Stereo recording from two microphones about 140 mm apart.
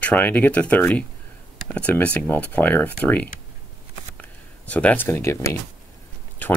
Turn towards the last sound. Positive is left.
turn(degrees=20)  # may be behind; listen again after turning